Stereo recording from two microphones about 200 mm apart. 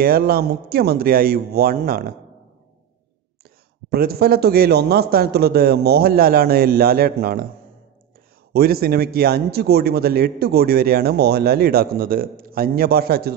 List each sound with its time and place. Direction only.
0.0 s a man's voice: 50° right (ahead or behind)
3.9 s a man's voice: 50° right (ahead or behind)
8.5 s a man's voice: 50° right (ahead or behind)